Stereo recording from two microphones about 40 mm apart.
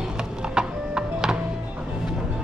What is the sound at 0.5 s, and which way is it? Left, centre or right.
Music, centre.